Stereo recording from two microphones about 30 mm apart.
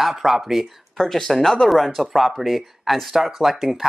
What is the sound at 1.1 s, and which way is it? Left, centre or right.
Speech, centre.